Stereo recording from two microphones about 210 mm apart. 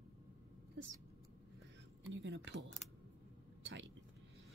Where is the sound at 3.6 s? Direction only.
60° right (ahead or behind).